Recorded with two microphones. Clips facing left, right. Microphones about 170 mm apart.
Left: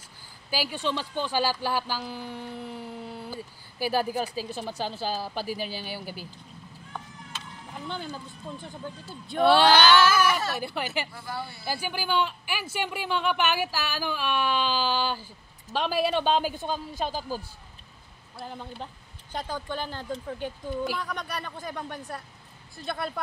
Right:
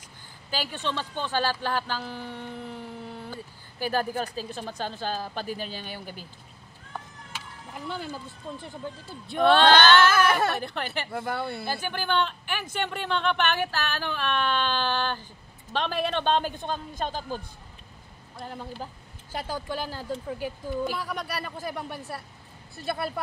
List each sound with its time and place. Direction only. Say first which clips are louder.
0.5 s speech: left 2 dB; 10° left (ahead or behind)
7.7 s speech: right 1 dB; 5° right (ahead or behind)
10.2 s speech: right 2 dB; 55° right (ahead or behind)
10.6 s speech: left 1 dB; 10° left (ahead or behind)
11.1 s speech: right 6 dB; 60° right (ahead or behind)
11.6 s speech: right 1 dB; 10° left (ahead or behind)